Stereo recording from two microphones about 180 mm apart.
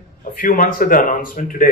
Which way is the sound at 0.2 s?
50° left (ahead or behind).